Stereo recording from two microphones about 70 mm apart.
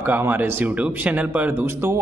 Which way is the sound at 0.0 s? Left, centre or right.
Right.